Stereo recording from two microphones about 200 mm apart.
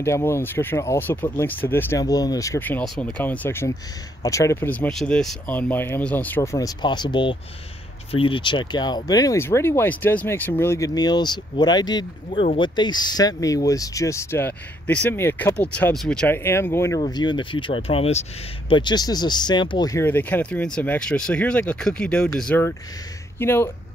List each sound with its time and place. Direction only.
0.0 s speech: 15° left (ahead or behind)